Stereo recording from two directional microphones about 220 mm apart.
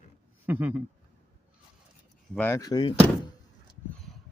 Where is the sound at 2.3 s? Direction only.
10° left (ahead or behind).